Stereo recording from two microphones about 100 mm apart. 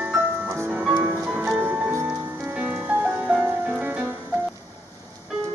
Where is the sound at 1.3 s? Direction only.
10° right (ahead or behind).